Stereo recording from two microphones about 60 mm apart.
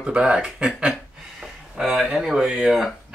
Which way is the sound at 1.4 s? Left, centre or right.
Centre.